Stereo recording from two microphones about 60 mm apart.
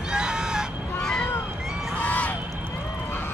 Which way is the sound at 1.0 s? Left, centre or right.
Centre.